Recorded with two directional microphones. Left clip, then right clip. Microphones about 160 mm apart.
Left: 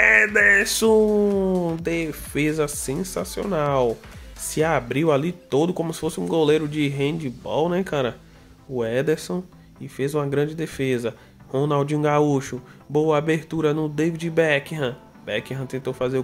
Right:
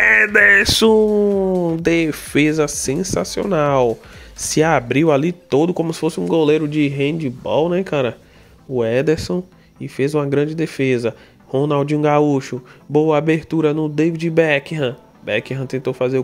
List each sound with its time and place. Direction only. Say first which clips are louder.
0.0 s mantra: right 4 dB; 45° right (ahead or behind)
1.4 s speech: right 5 dB; 25° right (ahead or behind)
1.8 s speech: right 9 dB; 40° right (ahead or behind); by 16.2 s 25° right (ahead or behind)